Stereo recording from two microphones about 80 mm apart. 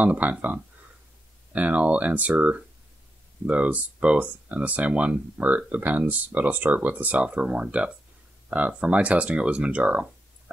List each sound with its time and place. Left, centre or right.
0.0 s speech: centre